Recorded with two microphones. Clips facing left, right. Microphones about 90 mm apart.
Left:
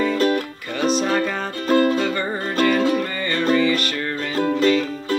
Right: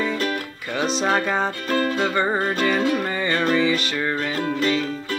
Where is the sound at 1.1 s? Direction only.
20° right (ahead or behind).